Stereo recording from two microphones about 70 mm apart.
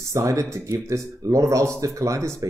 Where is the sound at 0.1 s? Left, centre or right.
Right.